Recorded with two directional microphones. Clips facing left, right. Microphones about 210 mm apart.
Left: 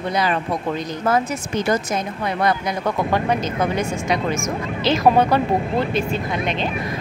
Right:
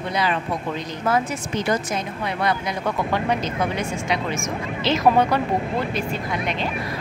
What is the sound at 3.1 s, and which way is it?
Speech, 45° left (ahead or behind).